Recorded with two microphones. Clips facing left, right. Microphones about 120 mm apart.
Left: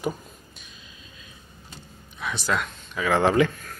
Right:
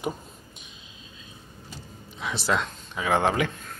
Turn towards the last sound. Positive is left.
turn(degrees=-20)  # may be behind; listen again after turning